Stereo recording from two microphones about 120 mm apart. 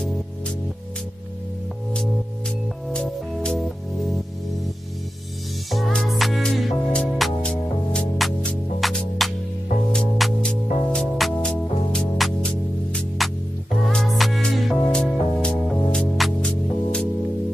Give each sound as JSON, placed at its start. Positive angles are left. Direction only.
{"t": 2.9, "sound": "music", "side_deg": 10}
{"t": 5.7, "sound": "music", "side_deg": 0}